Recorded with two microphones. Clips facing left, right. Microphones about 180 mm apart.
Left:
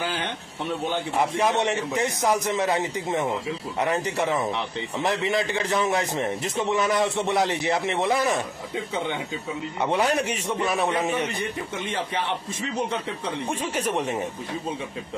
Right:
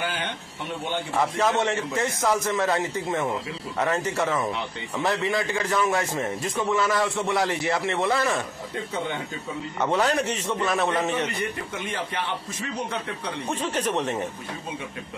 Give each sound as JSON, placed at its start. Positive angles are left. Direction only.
{"t": 1.1, "sound": "a man's voice", "side_deg": 20}
{"t": 9.8, "sound": "a man's voice", "side_deg": 15}
{"t": 13.5, "sound": "a man's voice", "side_deg": 10}